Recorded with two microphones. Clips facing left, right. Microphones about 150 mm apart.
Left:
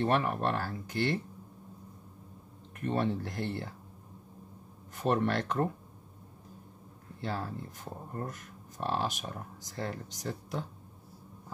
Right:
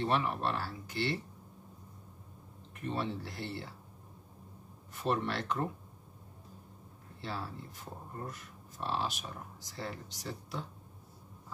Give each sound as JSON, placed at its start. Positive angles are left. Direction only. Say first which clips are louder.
{"t": 0.0, "sound": "speech", "louder": "left 3 dB", "side_deg": 50}
{"t": 2.8, "sound": "speech", "louder": "left 5 dB", "side_deg": 50}
{"t": 4.9, "sound": "speech", "louder": "left 4 dB", "side_deg": 45}
{"t": 7.2, "sound": "speech", "louder": "left 4 dB", "side_deg": 45}